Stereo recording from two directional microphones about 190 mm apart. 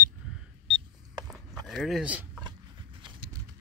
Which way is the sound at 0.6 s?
25° right (ahead or behind).